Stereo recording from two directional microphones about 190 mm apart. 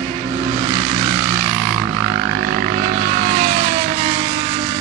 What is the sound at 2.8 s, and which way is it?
Vehicle, 40° right (ahead or behind).